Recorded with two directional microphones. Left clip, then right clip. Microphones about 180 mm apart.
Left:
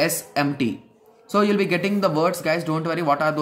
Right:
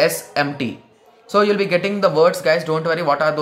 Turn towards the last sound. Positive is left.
turn(degrees=15)  # may be behind; listen again after turning